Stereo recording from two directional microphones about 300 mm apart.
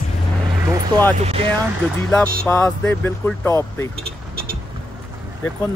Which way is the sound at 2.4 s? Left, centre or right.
Centre.